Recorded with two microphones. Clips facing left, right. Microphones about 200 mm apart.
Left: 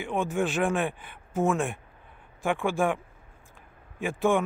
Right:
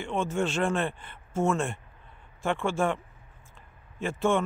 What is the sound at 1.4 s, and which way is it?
Speech, centre (ahead or behind).